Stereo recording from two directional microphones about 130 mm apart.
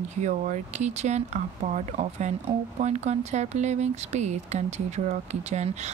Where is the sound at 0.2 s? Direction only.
65° right (ahead or behind).